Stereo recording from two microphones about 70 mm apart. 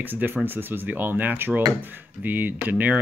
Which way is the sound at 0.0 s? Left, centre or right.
Right.